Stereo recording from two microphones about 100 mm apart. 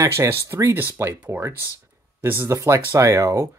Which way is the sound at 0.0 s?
30° right (ahead or behind).